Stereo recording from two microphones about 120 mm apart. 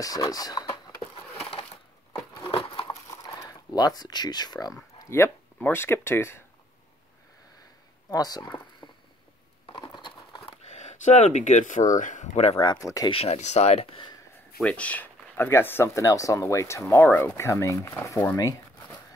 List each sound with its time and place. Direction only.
0.0 s a sound: 30° left (ahead or behind)
2.5 s crumpling: 45° left (ahead or behind)
2.9 s a sound: 30° left (ahead or behind)
4.9 s speech: 20° left (ahead or behind)
8.1 s speech: 30° left (ahead or behind)
9.7 s horse: 35° left (ahead or behind)
10.7 s speech: 80° left
12.8 s speech: 30° left (ahead or behind)
13.1 s speech: 60° left (ahead or behind)
14.6 s speech: 10° left (ahead or behind)